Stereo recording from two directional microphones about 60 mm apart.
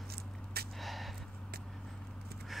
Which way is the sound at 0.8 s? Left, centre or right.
Centre.